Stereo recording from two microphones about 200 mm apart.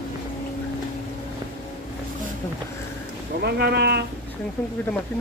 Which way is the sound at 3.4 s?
55° right (ahead or behind).